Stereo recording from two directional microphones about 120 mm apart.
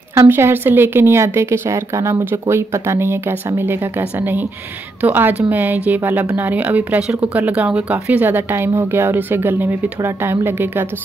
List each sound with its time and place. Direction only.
0.1 s a woman's voice: 25° right (ahead or behind)